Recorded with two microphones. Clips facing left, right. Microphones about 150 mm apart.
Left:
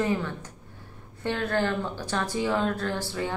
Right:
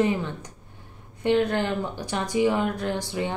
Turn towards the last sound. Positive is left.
turn(degrees=-15)  # may be behind; listen again after turning